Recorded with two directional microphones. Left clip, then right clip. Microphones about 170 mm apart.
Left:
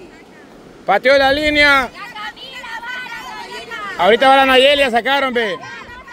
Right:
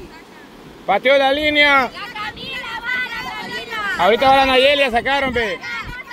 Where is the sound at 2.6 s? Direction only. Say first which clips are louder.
Right 4 dB; 20° right (ahead or behind).